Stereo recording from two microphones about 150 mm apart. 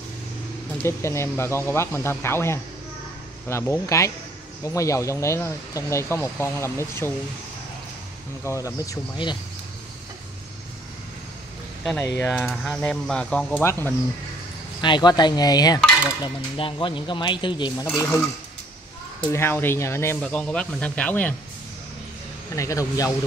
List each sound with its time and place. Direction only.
0.8 s speech: 20° left (ahead or behind)
8.5 s speech: 20° left (ahead or behind)
11.8 s speech: 10° left (ahead or behind)
12.3 s speech: 5° left (ahead or behind)
14.8 s speech: 30° left (ahead or behind)
17.9 s speech: 20° left (ahead or behind)
19.3 s speech: 15° left (ahead or behind)
20.2 s speech: 5° left (ahead or behind)
22.6 s speech: 20° left (ahead or behind)